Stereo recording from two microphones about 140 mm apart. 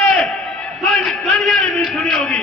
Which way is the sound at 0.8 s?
Centre (ahead or behind).